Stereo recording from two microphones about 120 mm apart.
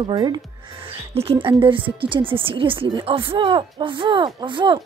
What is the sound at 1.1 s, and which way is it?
Speech, 50° right (ahead or behind).